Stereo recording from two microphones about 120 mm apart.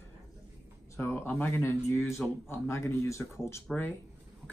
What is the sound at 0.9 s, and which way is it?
A man's voice, 20° left (ahead or behind).